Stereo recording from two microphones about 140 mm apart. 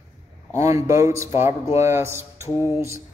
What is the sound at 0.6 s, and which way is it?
Speech, 20° right (ahead or behind).